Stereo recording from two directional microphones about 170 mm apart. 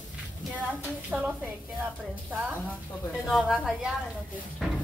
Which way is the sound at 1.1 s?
5° right (ahead or behind).